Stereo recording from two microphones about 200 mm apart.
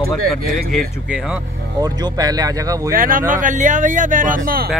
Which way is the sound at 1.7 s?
20° right (ahead or behind).